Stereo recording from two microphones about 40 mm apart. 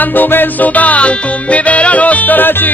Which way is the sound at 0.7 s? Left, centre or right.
Left.